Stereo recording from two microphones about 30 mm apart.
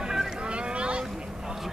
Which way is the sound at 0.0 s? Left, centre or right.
Centre.